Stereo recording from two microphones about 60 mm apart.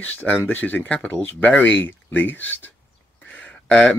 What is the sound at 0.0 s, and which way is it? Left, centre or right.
Speech, left.